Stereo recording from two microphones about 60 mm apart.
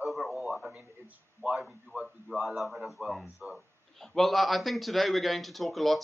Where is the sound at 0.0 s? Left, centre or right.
Centre.